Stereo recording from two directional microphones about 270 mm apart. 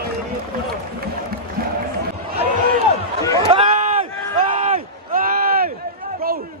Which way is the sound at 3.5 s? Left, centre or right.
Right.